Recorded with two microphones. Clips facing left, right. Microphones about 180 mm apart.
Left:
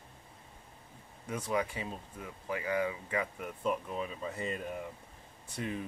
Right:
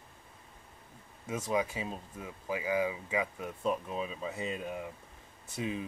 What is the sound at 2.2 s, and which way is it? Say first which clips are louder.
Speech: right 2 dB; 10° right (ahead or behind).